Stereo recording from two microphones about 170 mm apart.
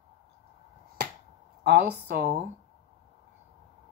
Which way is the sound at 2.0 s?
80° right.